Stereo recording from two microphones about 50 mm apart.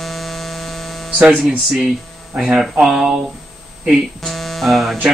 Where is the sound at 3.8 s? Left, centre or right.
Centre.